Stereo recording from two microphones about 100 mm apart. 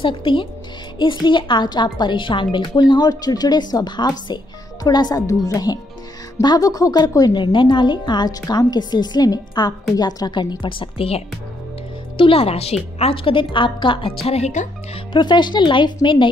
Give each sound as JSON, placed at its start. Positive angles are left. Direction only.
{"t": 0.0, "sound": "a woman's voice", "side_deg": 55}
{"t": 13.0, "sound": "a woman's voice", "side_deg": 60}
{"t": 15.1, "sound": "speech", "side_deg": 50}